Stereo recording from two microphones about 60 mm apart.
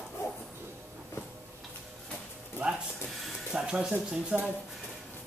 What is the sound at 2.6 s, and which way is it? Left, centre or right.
Sizzle, right.